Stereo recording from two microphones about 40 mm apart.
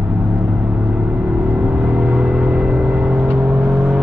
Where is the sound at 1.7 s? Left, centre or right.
Right.